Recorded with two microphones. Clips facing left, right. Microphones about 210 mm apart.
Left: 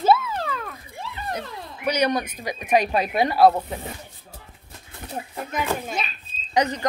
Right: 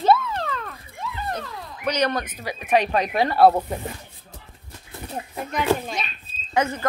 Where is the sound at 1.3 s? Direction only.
10° left (ahead or behind).